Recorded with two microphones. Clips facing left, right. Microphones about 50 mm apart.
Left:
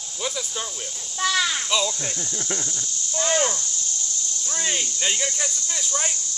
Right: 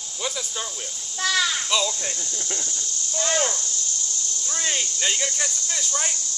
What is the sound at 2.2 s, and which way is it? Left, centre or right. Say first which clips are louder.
Speech: left 3 dB; centre.